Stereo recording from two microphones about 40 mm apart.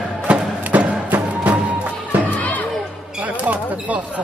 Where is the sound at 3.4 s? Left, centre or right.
Right.